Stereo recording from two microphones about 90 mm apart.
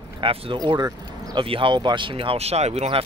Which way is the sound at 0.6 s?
50° right (ahead or behind).